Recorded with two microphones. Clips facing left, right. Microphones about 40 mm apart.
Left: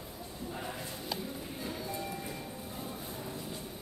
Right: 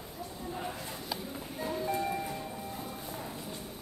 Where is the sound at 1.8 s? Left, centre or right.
Right.